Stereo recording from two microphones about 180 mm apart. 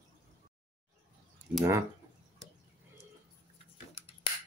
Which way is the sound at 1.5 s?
15° right (ahead or behind).